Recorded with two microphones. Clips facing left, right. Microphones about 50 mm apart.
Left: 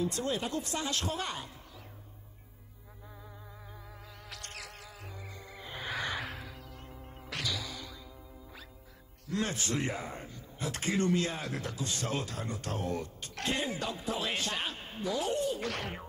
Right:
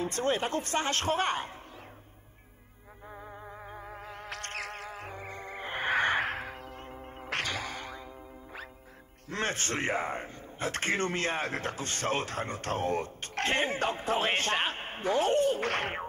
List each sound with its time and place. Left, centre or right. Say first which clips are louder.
0.0 s a man's voice: right 3 dB; right
3.2 s music: right 9 dB; right
9.3 s a man's voice: right 1 dB; right